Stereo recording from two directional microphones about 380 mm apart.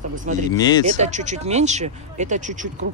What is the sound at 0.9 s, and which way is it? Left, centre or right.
Speech, centre.